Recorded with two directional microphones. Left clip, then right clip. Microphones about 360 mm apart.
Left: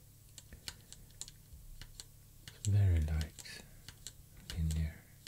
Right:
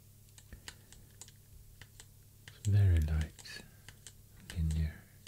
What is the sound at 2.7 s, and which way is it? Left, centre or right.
Typing, centre.